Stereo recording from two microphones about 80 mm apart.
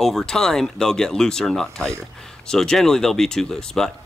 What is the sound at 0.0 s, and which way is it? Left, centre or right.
Speech, centre.